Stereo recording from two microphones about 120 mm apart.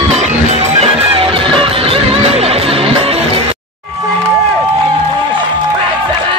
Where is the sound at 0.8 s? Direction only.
50° right (ahead or behind).